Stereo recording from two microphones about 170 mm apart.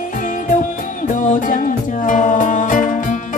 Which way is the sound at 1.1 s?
50° left (ahead or behind).